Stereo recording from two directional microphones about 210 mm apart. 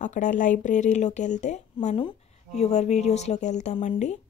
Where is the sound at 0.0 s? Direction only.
35° left (ahead or behind).